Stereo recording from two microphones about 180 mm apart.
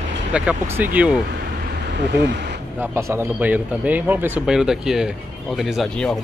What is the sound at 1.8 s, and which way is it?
Speech, 75° right (ahead or behind).